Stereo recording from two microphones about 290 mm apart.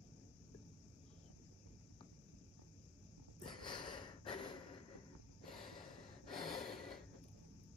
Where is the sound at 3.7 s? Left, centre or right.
Centre.